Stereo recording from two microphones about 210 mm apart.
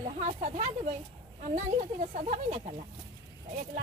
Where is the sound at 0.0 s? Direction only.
35° right (ahead or behind).